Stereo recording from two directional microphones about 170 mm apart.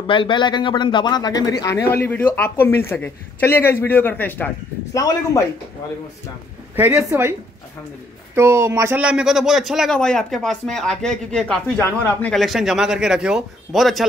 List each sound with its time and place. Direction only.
0.0 s a man's voice: 30° left (ahead or behind)
6.7 s a woman's voice: 10° right (ahead or behind)
8.4 s speech: 15° right (ahead or behind); by 14.0 s centre (ahead or behind)